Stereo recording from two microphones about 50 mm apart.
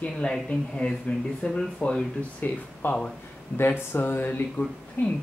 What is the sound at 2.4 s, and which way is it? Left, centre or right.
Speech, left.